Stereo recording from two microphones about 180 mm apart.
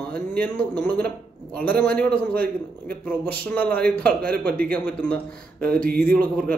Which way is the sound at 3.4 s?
10° left (ahead or behind).